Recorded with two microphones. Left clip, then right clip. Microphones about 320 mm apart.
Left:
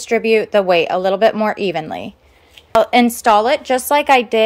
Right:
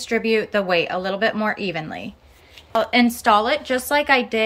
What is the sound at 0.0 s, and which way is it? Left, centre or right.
Speech, centre.